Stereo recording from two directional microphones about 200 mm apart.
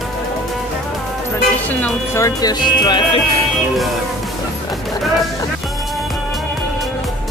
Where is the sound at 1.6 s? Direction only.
10° left (ahead or behind).